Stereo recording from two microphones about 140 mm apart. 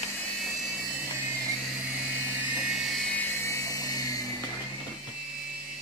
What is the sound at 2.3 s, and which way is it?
Vehicle, 5° right (ahead or behind).